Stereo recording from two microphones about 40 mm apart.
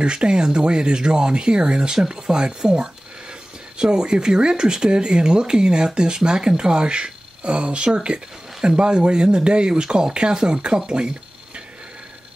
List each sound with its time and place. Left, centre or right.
0.0 s speech: right